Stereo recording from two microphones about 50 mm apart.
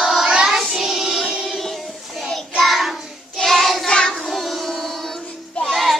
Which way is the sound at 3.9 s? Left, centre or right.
Centre.